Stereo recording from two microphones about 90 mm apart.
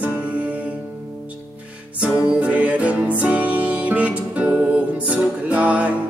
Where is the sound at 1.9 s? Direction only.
15° right (ahead or behind).